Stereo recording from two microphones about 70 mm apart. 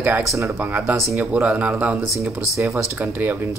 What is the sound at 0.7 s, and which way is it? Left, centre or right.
Speech, right.